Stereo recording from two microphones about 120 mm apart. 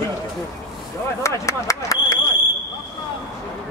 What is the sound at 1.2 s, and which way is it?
Speech, 25° left (ahead or behind).